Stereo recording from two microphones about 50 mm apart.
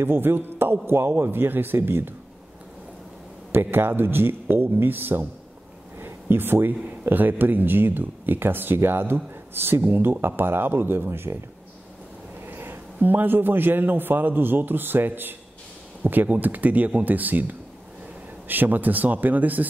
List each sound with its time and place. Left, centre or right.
0.0 s a man's voice: right
3.5 s a man's voice: right
12.4 s a man's voice: right